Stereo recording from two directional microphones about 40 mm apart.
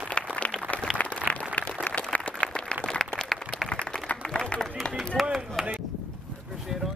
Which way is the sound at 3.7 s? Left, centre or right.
Left.